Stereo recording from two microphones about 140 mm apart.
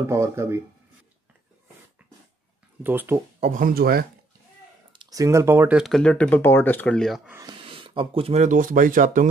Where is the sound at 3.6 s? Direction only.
90° right.